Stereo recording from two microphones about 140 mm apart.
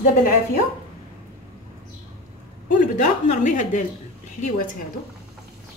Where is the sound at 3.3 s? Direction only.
65° left (ahead or behind).